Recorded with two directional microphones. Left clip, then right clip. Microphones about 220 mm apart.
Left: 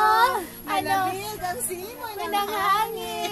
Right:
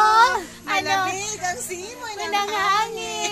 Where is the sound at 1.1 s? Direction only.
15° left (ahead or behind).